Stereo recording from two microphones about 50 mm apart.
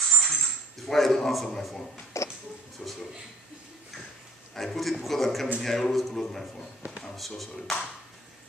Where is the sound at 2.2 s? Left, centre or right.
Left.